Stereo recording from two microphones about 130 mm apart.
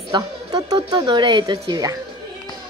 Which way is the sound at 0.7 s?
35° right (ahead or behind).